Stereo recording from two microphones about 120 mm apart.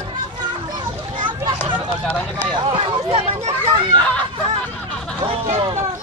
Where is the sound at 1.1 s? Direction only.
40° right (ahead or behind).